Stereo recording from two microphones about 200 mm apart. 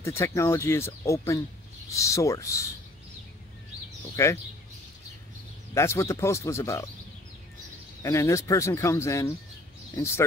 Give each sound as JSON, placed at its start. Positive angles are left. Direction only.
{"t": 0.0, "sound": "speech", "side_deg": 15}
{"t": 4.2, "sound": "speech", "side_deg": 15}
{"t": 5.8, "sound": "speech", "side_deg": 15}
{"t": 8.0, "sound": "speech", "side_deg": 15}